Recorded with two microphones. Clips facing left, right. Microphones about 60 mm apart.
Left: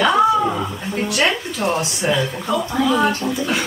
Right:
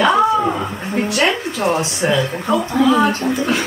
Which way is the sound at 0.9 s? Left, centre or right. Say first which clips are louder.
Right 2 dB; right.